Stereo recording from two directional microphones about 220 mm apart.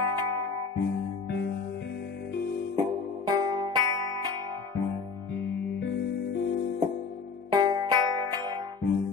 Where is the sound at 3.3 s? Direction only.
20° right (ahead or behind).